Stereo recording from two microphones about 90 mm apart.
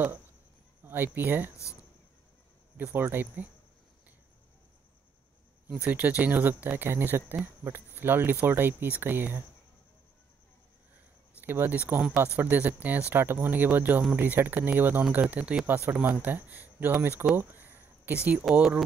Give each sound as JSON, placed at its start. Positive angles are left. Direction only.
{"t": 0.8, "sound": "speech", "side_deg": -25}
{"t": 2.8, "sound": "speech", "side_deg": -25}
{"t": 5.9, "sound": "speech", "side_deg": -15}
{"t": 11.4, "sound": "speech", "side_deg": -25}
{"t": 17.4, "sound": "a sound", "side_deg": -20}
{"t": 18.4, "sound": "speech", "side_deg": -10}